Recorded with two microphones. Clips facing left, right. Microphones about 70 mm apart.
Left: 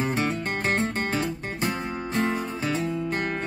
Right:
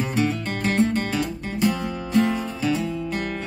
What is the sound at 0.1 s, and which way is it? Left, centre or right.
Music, left.